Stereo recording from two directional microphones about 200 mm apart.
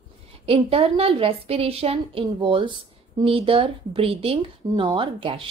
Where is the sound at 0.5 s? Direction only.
25° right (ahead or behind).